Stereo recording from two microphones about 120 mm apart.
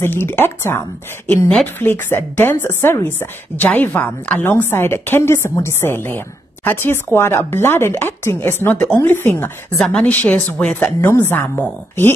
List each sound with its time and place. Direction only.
0.0 s a woman's voice: 20° left (ahead or behind)